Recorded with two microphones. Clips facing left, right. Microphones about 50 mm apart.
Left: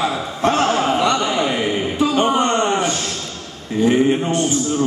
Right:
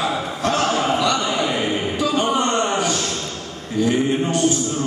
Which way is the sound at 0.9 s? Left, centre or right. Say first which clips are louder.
Left 2 dB; left.